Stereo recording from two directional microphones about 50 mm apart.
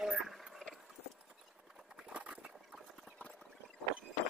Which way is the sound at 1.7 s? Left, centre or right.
Centre.